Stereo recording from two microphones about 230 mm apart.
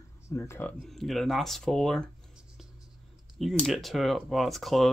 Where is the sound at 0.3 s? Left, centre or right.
Centre.